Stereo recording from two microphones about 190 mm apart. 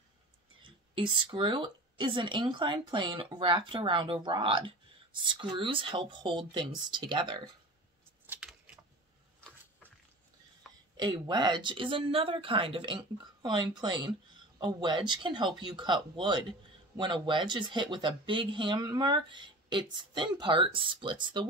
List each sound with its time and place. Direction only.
0.6 s speech: 25° right (ahead or behind)
8.3 s a sound: 5° right (ahead or behind)
11.0 s speech: 25° right (ahead or behind)